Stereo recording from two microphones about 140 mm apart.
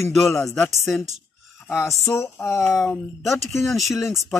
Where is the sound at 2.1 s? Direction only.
20° left (ahead or behind).